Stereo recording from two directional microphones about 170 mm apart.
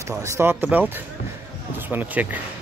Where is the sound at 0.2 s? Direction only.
15° right (ahead or behind).